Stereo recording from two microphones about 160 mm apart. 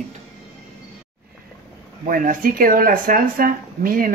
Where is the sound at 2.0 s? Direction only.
60° right (ahead or behind).